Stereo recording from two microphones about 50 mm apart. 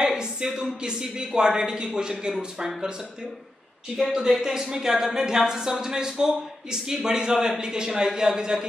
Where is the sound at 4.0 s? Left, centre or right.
Centre.